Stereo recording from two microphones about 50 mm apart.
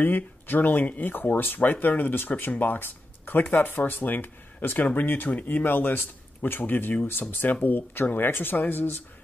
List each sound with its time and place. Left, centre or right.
0.0 s speech: left